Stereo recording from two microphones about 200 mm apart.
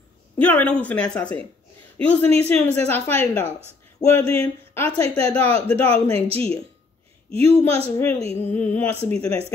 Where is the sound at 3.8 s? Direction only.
10° left (ahead or behind).